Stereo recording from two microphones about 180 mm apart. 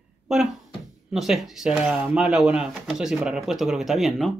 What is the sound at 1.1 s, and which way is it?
Speech, centre (ahead or behind).